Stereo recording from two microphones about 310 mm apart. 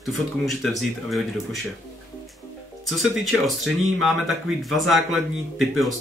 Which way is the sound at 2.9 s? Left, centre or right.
Centre.